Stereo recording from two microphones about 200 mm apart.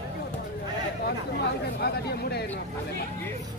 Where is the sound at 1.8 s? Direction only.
55° left (ahead or behind).